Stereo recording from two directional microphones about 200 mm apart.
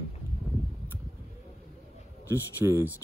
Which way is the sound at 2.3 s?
10° right (ahead or behind).